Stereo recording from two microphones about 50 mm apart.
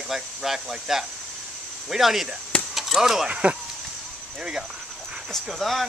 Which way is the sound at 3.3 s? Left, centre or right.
Right.